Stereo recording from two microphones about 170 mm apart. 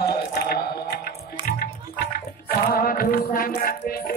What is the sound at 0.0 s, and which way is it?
Mantra, 70° left (ahead or behind).